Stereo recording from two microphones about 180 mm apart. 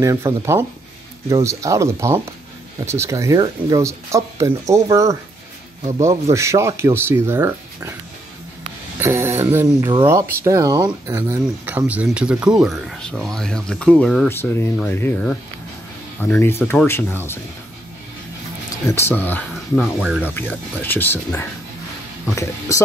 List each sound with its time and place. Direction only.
0.0 s speech: 15° right (ahead or behind)
6.3 s speech: 15° right (ahead or behind)
9.0 s speech: 15° right (ahead or behind); by 17.4 s 10° left (ahead or behind)
18.9 s speech: 15° left (ahead or behind); by 20.3 s 5° right (ahead or behind)
20.3 s speech: 10° left (ahead or behind)